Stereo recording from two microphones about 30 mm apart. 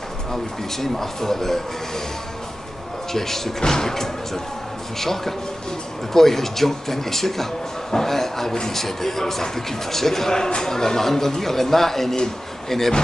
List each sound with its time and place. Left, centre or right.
0.3 s a man's voice: centre
3.1 s a man's voice: centre
10.3 s a man's voice: left